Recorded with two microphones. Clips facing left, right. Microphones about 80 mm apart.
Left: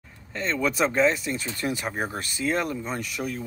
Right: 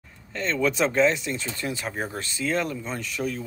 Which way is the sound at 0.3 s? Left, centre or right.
Centre.